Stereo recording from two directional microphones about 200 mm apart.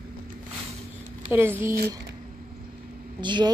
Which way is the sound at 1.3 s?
10° right (ahead or behind).